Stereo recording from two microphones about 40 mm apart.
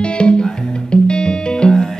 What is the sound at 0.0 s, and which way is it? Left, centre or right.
Music, left.